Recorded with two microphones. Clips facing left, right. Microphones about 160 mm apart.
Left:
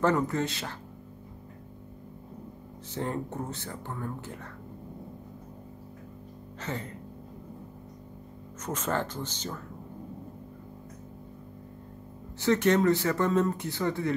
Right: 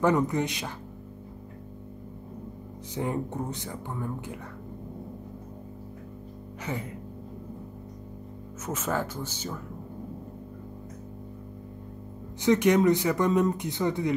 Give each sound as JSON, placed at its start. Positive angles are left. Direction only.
{"t": 0.0, "sound": "speech", "side_deg": -15}
{"t": 2.9, "sound": "speech", "side_deg": -15}
{"t": 6.6, "sound": "speech", "side_deg": -10}
{"t": 8.6, "sound": "speech", "side_deg": -10}
{"t": 12.4, "sound": "speech", "side_deg": -15}